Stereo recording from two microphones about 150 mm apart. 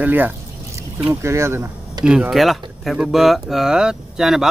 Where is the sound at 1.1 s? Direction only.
20° right (ahead or behind).